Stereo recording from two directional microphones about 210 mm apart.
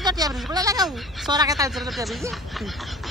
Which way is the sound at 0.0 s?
20° right (ahead or behind).